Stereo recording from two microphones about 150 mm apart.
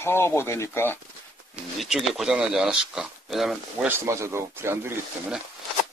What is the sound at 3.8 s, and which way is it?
Speech, 20° right (ahead or behind).